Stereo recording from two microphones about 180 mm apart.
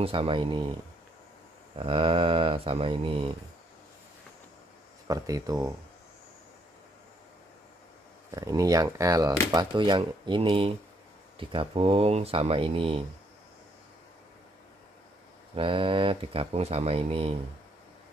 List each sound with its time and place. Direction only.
0.0 s speech: 30° right (ahead or behind)
1.8 s speech: 30° right (ahead or behind)
5.0 s speech: 20° right (ahead or behind)
8.3 s speech: 20° right (ahead or behind)
15.5 s speech: 30° right (ahead or behind)